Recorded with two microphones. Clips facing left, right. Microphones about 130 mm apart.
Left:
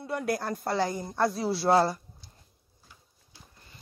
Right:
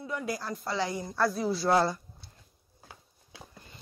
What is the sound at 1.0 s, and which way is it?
Speech, 25° left (ahead or behind).